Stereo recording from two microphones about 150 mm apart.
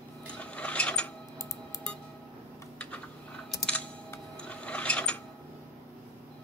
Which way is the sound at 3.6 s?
10° left (ahead or behind).